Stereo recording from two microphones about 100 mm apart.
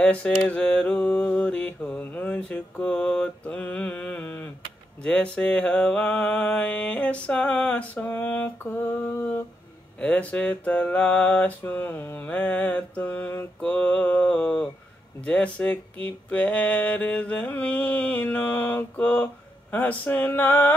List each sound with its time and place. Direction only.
0.0 s mantra: 15° left (ahead or behind)